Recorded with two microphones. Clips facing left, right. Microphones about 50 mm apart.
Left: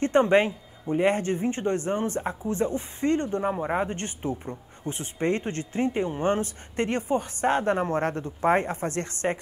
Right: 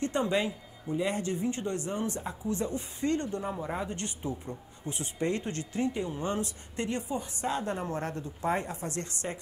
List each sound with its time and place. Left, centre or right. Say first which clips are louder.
0.0 s speech: left 8 dB; left